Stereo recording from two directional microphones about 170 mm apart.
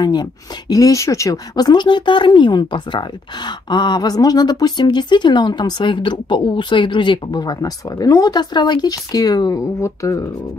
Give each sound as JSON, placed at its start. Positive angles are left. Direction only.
{"t": 0.0, "sound": "speech", "side_deg": 25}